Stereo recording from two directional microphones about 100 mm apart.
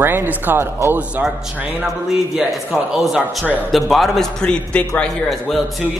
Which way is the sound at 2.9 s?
Centre (ahead or behind).